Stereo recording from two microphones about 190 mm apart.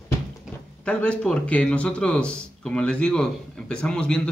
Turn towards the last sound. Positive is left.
turn(degrees=5)  # may be behind; listen again after turning